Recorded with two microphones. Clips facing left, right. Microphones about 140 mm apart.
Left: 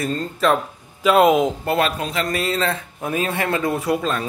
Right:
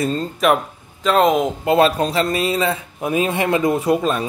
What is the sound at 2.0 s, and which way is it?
Speech, 30° right (ahead or behind).